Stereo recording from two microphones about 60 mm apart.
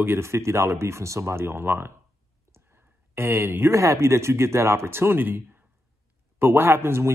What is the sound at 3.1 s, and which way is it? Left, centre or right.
Speech, right.